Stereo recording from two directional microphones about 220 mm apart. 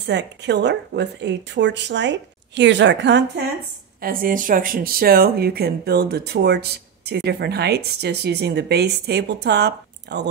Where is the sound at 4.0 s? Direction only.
40° right (ahead or behind).